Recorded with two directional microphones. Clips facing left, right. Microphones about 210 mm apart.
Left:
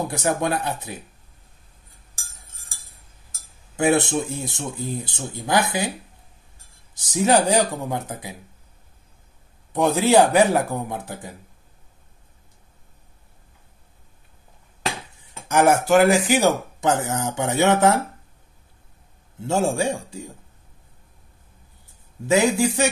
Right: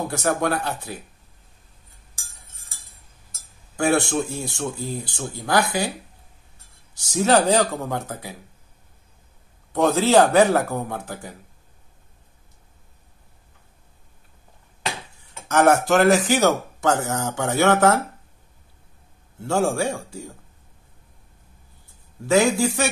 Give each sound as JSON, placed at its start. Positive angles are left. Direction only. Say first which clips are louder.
{"t": 0.1, "sound": "speech", "louder": "even", "side_deg": 15}
{"t": 3.7, "sound": "speech", "louder": "left 1 dB", "side_deg": 20}
{"t": 7.1, "sound": "speech", "louder": "right 1 dB", "side_deg": 15}
{"t": 9.8, "sound": "speech", "louder": "even", "side_deg": 15}
{"t": 15.4, "sound": "speech", "louder": "even", "side_deg": 10}
{"t": 19.4, "sound": "speech", "louder": "even", "side_deg": 20}
{"t": 22.2, "sound": "speech", "louder": "even", "side_deg": 20}